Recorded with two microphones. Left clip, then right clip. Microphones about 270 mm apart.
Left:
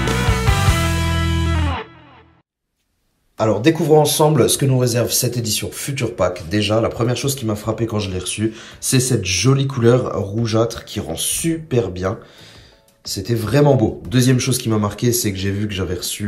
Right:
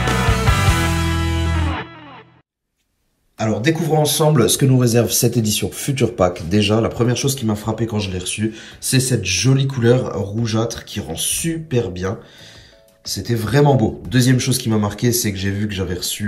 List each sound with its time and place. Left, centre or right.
0.0 s music: centre
3.3 s speech: centre
13.4 s speech: left
13.8 s speech: centre
14.9 s speech: left
15.6 s speech: centre